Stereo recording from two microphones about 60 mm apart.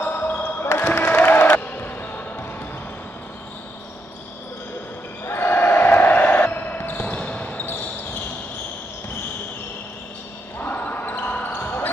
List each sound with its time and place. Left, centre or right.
0.0 s music: left
5.2 s basketball bounce: left
10.6 s basketball bounce: left